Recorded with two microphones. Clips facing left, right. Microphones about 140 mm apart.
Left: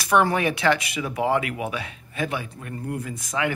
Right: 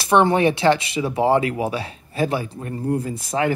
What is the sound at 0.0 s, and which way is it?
Speech, 25° right (ahead or behind).